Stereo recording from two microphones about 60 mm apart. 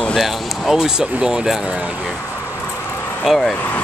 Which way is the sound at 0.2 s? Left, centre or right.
Centre.